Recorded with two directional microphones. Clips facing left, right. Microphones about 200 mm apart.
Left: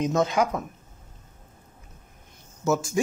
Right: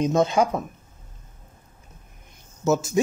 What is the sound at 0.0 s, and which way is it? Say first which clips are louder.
Speech: right 3 dB; 25° right (ahead or behind).